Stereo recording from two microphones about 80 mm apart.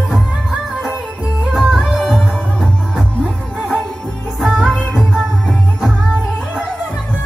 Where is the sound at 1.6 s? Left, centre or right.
Centre.